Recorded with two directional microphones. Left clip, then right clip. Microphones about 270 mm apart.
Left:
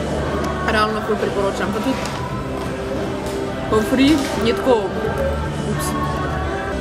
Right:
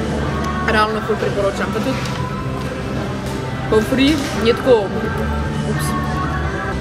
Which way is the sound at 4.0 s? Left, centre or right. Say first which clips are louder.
Even; centre.